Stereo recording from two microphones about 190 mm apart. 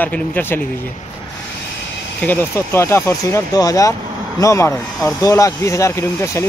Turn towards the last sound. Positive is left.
turn(degrees=15)  # may be behind; listen again after turning